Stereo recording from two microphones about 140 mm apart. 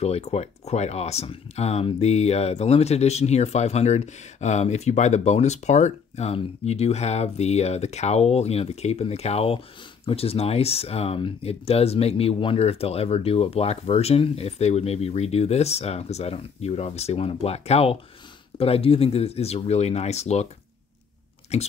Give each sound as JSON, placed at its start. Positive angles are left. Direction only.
{"t": 0.0, "sound": "speech", "side_deg": 50}
{"t": 21.5, "sound": "speech", "side_deg": 50}